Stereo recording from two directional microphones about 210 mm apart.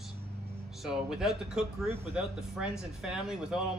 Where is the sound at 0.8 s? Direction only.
Centre (ahead or behind).